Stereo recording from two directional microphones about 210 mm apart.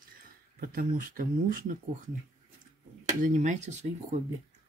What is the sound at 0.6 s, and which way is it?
Speech, 45° right (ahead or behind).